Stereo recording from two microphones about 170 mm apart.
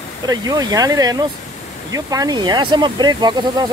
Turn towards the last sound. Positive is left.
turn(degrees=-25)  # may be behind; listen again after turning